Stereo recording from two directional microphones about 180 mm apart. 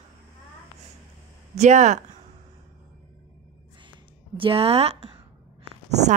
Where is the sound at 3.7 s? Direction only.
25° right (ahead or behind).